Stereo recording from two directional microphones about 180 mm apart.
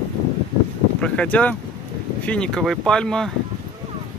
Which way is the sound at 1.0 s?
5° left (ahead or behind).